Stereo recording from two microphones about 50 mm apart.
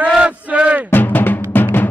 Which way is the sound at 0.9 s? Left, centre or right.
Left.